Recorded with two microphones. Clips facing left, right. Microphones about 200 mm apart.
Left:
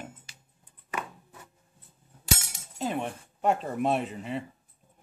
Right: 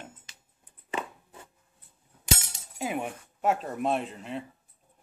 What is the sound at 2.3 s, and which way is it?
Speech, 10° right (ahead or behind).